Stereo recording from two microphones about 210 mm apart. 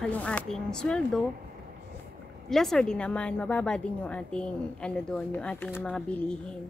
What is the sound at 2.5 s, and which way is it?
A woman's voice, centre (ahead or behind).